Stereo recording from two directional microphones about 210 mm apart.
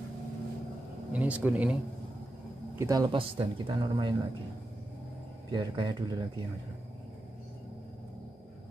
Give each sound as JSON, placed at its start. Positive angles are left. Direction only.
{"t": 1.1, "sound": "speech", "side_deg": -5}
{"t": 2.8, "sound": "speech", "side_deg": -15}
{"t": 5.5, "sound": "speech", "side_deg": -20}